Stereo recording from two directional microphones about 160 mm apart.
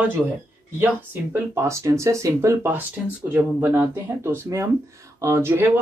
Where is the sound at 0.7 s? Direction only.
15° right (ahead or behind).